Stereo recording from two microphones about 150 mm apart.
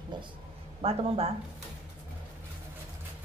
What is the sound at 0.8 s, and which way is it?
Speech, 40° right (ahead or behind).